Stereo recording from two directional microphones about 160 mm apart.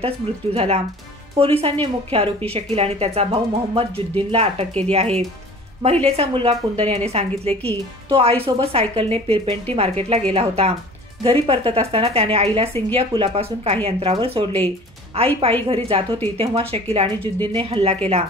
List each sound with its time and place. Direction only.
0.0 s a woman's voice: 40° right (ahead or behind)